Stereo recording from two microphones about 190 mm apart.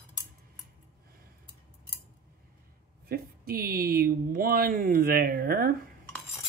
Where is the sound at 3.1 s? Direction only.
50° right (ahead or behind).